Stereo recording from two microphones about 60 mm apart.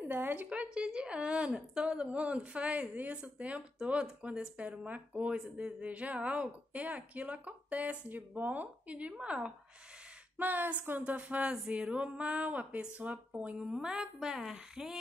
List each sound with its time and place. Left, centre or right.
0.1 s a woman's voice: right
10.3 s a woman's voice: right; by 15.0 s centre